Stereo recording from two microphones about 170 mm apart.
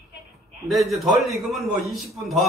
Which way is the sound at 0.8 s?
Centre (ahead or behind).